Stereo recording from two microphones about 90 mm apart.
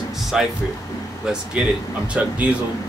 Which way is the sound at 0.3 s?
5° right (ahead or behind).